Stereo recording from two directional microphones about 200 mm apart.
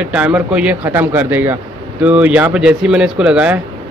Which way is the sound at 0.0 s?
5° right (ahead or behind).